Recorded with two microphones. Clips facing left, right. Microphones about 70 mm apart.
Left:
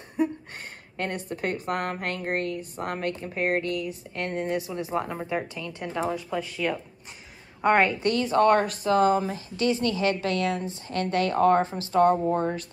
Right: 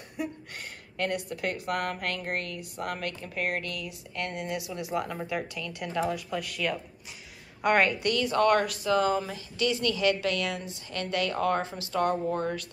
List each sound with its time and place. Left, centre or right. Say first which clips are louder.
0.2 s a woman's voice: left 8 dB; left